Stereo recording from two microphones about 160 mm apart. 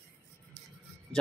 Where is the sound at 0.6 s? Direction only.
90° right.